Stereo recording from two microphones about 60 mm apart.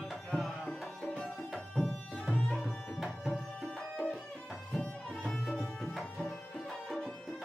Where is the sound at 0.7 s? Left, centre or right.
Centre.